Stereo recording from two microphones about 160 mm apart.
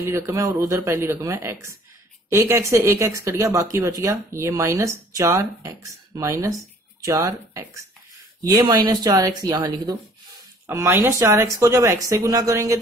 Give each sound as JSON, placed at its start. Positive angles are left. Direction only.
{"t": 0.1, "sound": "speech", "side_deg": -20}